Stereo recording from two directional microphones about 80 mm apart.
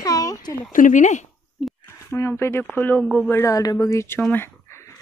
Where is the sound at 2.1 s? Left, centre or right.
Left.